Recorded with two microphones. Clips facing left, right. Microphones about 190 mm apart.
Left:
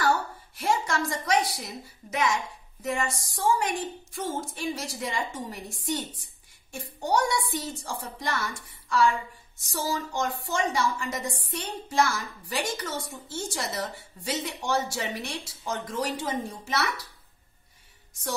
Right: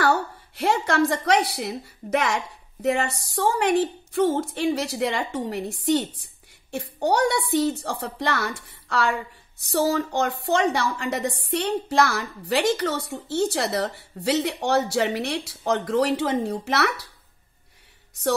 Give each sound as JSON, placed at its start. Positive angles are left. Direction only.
{"t": 0.0, "sound": "a woman's voice", "side_deg": -65}